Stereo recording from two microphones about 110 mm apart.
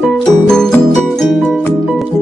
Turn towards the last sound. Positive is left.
turn(degrees=5)  # may be behind; listen again after turning